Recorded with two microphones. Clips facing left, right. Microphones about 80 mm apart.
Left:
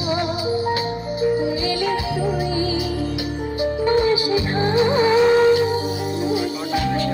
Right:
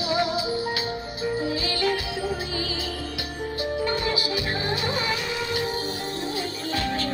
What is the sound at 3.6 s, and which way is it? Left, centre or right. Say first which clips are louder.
Music: left 9 dB; left.